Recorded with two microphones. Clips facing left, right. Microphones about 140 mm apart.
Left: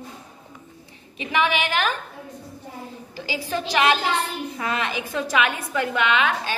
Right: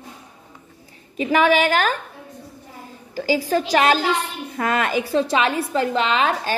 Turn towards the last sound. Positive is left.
turn(degrees=-35)  # may be behind; listen again after turning